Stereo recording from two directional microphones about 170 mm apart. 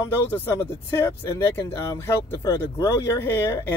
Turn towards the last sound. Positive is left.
turn(degrees=15)  # may be behind; listen again after turning